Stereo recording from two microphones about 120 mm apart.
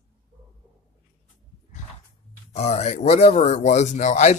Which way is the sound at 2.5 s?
65° left (ahead or behind).